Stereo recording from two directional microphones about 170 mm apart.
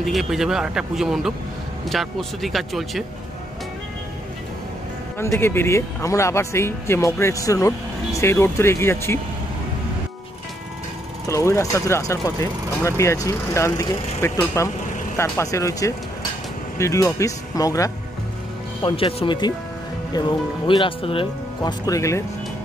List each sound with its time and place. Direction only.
0.0 s speech: centre (ahead or behind)
5.2 s speech: 15° left (ahead or behind)
11.2 s speech: 15° left (ahead or behind)
18.8 s speech: 30° left (ahead or behind)